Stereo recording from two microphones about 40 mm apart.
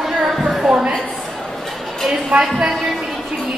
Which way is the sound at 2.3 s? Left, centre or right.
Centre.